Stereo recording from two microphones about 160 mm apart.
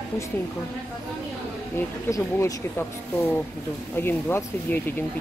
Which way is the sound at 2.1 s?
20° left (ahead or behind).